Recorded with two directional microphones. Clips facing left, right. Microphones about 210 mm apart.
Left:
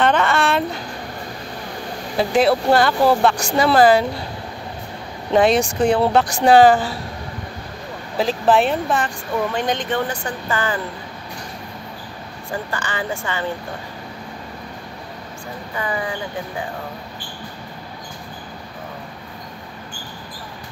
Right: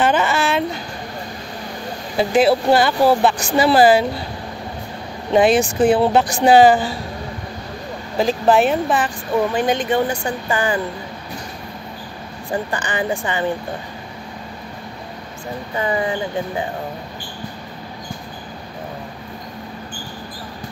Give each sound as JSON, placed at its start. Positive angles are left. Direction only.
{"t": 0.0, "sound": "a sound", "side_deg": -5}
{"t": 2.1, "sound": "speech", "side_deg": 0}
{"t": 5.4, "sound": "speech", "side_deg": -5}
{"t": 8.2, "sound": "speech", "side_deg": 0}
{"t": 12.7, "sound": "speech", "side_deg": -15}
{"t": 15.8, "sound": "speech", "side_deg": -25}